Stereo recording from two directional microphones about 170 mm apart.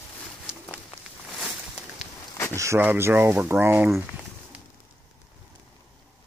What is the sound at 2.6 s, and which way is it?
Speech, 15° right (ahead or behind).